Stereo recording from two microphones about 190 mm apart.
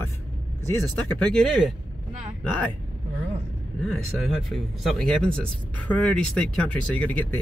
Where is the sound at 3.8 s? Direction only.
Centre (ahead or behind).